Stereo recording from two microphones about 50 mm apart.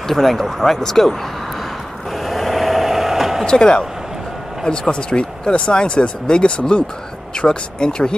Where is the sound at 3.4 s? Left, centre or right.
Centre.